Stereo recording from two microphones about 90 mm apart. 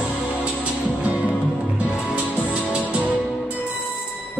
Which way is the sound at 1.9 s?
15° left (ahead or behind).